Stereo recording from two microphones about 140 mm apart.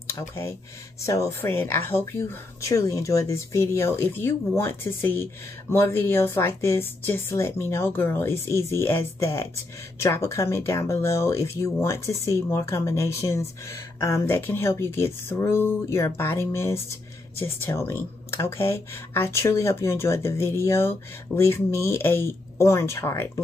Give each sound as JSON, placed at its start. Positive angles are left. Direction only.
{"t": 1.0, "sound": "speech", "side_deg": 20}